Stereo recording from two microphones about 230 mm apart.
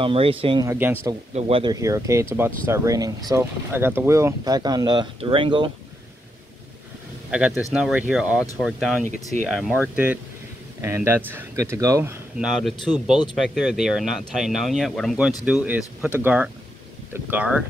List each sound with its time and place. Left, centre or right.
0.0 s speech: right
1.3 s speech: right
7.2 s speech: centre